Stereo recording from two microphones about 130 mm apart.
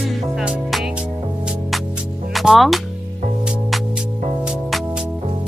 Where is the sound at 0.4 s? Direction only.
5° right (ahead or behind).